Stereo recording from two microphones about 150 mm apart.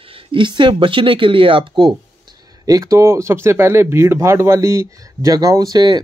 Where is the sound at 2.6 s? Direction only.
25° right (ahead or behind).